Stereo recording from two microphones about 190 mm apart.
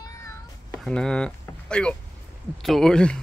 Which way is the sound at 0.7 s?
5° left (ahead or behind).